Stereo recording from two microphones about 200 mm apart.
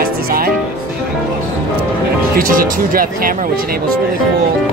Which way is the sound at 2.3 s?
45° right (ahead or behind).